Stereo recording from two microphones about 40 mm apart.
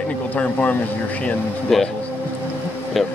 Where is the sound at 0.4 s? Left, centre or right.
Left.